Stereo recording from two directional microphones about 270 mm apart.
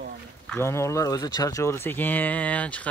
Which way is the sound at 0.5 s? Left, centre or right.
Centre.